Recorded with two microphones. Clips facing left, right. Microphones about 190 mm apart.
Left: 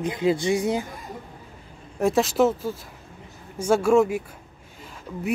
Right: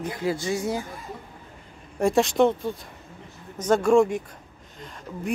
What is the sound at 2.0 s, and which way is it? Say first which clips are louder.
Speech: even; centre (ahead or behind).